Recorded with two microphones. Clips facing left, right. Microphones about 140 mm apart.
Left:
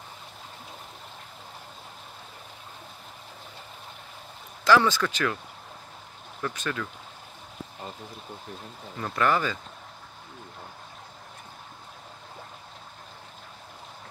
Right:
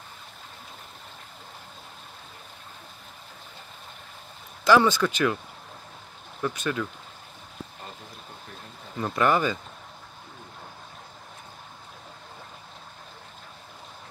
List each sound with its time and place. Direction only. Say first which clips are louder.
4.6 s speech: right 2 dB; 15° right (ahead or behind)
6.4 s speech: right 3 dB; 15° right (ahead or behind)
9.0 s speech: right 2 dB; 15° right (ahead or behind)